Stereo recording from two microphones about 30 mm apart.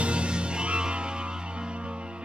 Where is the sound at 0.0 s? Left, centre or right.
Right.